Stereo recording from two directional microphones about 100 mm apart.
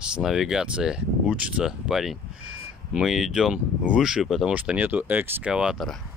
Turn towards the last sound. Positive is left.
turn(degrees=-5)  # may be behind; listen again after turning